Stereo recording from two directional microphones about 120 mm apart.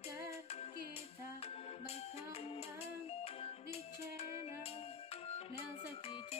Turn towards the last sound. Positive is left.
turn(degrees=55)  # may be behind; listen again after turning